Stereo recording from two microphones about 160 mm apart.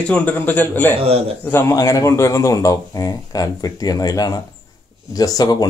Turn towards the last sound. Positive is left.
turn(degrees=25)  # may be behind; listen again after turning